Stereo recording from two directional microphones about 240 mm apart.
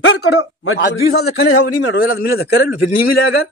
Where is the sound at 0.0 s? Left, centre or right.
Left.